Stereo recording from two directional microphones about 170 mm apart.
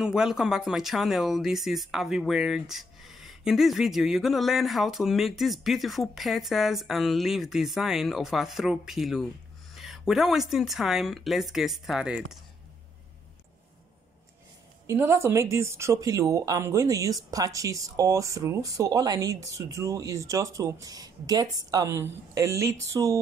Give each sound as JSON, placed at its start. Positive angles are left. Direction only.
{"t": 0.0, "sound": "speech", "side_deg": -5}
{"t": 9.8, "sound": "a sound", "side_deg": 0}
{"t": 10.5, "sound": "speech", "side_deg": 0}
{"t": 14.9, "sound": "speech", "side_deg": -15}